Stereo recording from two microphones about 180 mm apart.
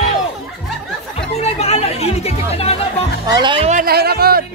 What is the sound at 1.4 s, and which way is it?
Chatter, 35° left (ahead or behind).